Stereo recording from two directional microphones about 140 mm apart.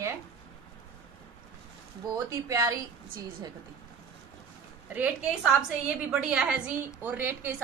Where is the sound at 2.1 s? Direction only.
25° right (ahead or behind).